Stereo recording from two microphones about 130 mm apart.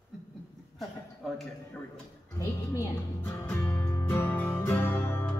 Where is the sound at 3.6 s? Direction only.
15° left (ahead or behind).